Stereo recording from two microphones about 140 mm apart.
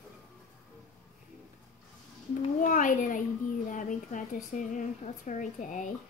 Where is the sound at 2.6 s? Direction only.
70° left (ahead or behind).